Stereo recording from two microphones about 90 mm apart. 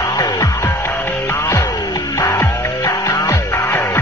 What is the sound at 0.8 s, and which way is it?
Music, 20° left (ahead or behind).